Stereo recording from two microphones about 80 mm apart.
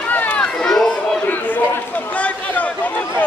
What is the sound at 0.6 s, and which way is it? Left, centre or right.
Run, centre.